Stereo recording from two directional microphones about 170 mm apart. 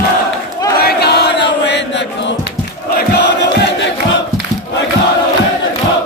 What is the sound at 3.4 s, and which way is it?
Crowd, 90° left.